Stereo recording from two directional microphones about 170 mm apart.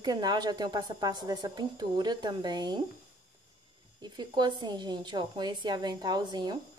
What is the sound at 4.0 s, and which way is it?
A woman's voice, 25° right (ahead or behind).